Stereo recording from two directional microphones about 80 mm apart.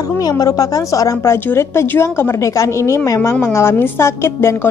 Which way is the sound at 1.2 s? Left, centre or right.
Left.